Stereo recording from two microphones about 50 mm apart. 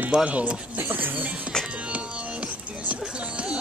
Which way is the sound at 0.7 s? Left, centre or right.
Right.